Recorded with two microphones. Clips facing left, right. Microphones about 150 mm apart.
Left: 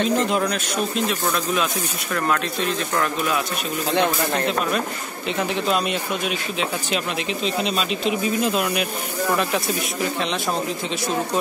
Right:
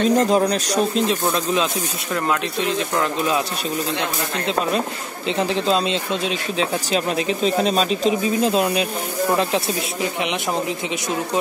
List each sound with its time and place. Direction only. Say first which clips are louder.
0.0 s speech: right 4 dB; 40° right (ahead or behind); by 3.3 s 20° right (ahead or behind)
4.5 s speech: right 2 dB; 25° right (ahead or behind)
7.4 s speech: right 5 dB; 40° right (ahead or behind)